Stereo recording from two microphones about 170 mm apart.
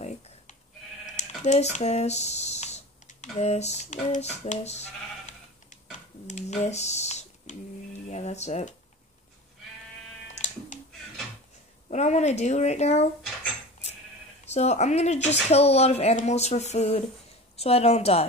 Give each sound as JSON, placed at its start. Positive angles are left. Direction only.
{"t": 1.1, "sound": "speech", "side_deg": 45}
{"t": 5.7, "sound": "typing", "side_deg": 45}
{"t": 8.1, "sound": "speech", "side_deg": 40}
{"t": 10.3, "sound": "music", "side_deg": 45}
{"t": 11.9, "sound": "speech", "side_deg": 40}
{"t": 14.4, "sound": "speech", "side_deg": 40}